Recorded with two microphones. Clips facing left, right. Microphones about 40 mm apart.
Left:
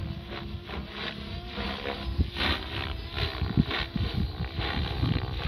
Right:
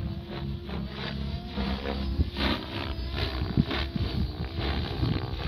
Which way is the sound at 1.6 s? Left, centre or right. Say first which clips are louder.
Right 1 dB; left.